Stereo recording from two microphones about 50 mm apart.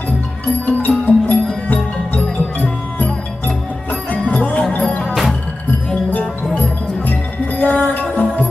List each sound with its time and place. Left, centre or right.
0.7 s music: left
2.6 s music: left
5.0 s music: centre
6.5 s music: left